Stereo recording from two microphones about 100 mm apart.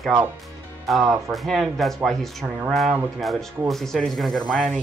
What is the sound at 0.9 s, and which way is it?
Speech, centre (ahead or behind).